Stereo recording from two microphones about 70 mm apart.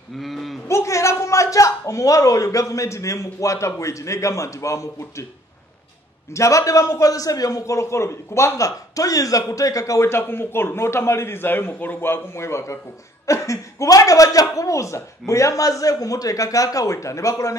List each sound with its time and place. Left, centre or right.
0.2 s livestock: centre
0.7 s a man's voice: left
6.3 s a man's voice: left